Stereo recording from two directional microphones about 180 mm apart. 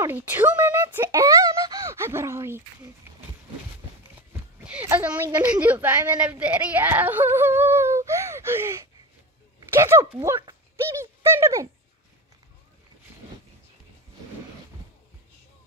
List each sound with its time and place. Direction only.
0.0 s speech: 10° right (ahead or behind)
4.3 s a woman's voice: 10° right (ahead or behind)